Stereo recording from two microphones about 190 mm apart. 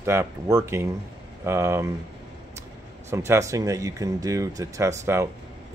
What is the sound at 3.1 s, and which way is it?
Speech, 15° right (ahead or behind).